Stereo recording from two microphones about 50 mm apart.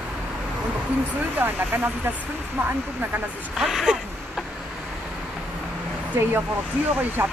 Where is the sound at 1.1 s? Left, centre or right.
Right.